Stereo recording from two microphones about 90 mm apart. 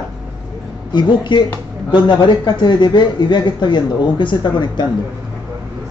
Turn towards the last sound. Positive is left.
turn(degrees=60)  # may be behind; listen again after turning